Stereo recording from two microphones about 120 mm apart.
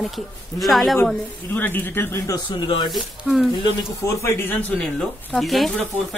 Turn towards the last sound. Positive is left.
turn(degrees=0)  # may be behind; listen again after turning